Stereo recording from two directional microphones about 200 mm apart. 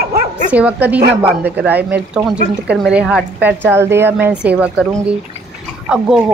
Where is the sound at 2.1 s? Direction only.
5° right (ahead or behind).